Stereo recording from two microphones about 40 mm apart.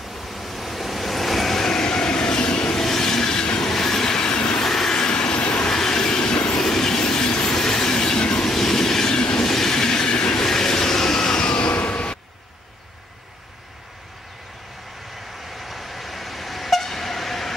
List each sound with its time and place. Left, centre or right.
0.1 s waves: centre
1.6 s train: centre
2.7 s train: centre
4.6 s train: centre
4.9 s train: left
5.7 s train: centre
6.5 s train: centre
8.5 s train: centre; by 11.7 s left
11.7 s vehicle: left
15.5 s vehicle: centre